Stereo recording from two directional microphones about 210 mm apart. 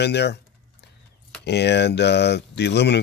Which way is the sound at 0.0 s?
55° left (ahead or behind).